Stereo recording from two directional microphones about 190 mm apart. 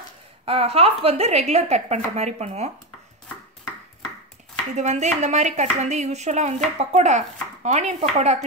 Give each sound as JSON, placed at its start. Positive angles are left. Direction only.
{"t": 0.5, "sound": "speech", "side_deg": -30}
{"t": 4.7, "sound": "speech", "side_deg": -40}